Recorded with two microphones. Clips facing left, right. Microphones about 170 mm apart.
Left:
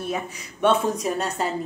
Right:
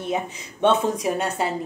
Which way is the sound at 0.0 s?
20° right (ahead or behind).